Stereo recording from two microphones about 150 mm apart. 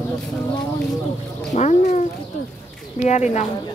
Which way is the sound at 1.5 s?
50° left (ahead or behind).